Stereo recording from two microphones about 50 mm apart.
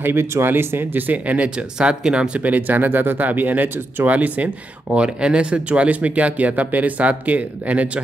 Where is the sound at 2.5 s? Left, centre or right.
Right.